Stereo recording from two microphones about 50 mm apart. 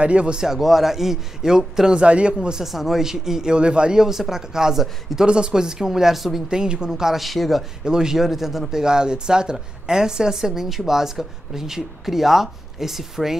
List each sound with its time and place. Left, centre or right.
0.0 s a man's voice: right
0.4 s speech: centre
1.9 s a man's voice: right
3.5 s speech: right; by 6.4 s centre
6.5 s speech: centre
6.9 s speech: centre
7.8 s speech: centre